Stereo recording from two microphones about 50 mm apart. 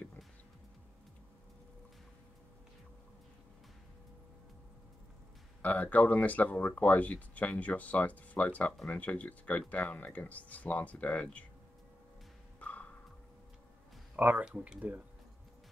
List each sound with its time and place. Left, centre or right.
5.6 s speech: left
12.5 s a sound: left
14.1 s speech: right